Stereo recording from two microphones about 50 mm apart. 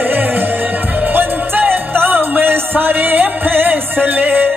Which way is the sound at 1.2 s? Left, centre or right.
Right.